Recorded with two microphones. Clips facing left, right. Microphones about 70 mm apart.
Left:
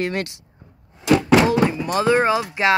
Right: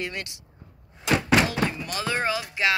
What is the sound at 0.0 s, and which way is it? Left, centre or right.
Speech, left.